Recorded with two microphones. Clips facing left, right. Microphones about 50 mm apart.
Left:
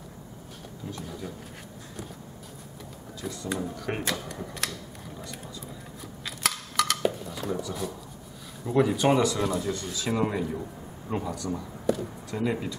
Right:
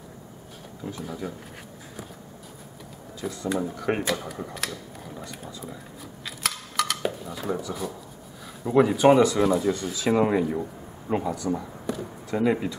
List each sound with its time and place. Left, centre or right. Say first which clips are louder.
0.8 s speech: right 4 dB; centre
3.2 s speech: right 4 dB; centre
6.2 s dishes: left 1 dB; centre
8.6 s speech: right 5 dB; centre
10.1 s speech: right 6 dB; right
11.3 s a sound: right 4 dB; centre
12.4 s speech: right 5 dB; centre